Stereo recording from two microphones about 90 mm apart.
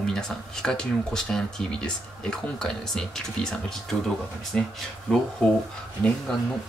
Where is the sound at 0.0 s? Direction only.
5° left (ahead or behind).